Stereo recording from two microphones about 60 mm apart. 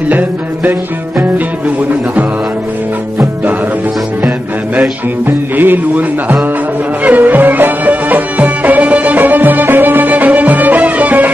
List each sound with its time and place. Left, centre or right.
0.1 s music: right
4.7 s music: right